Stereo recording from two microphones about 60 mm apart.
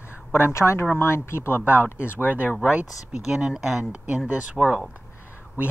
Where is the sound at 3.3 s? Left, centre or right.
Centre.